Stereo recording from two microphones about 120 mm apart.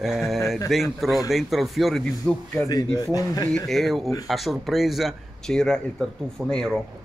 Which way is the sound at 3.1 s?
30° left (ahead or behind).